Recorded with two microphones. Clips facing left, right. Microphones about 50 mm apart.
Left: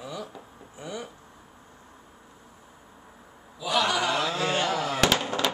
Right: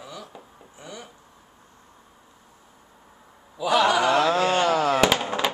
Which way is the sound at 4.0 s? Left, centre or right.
Right.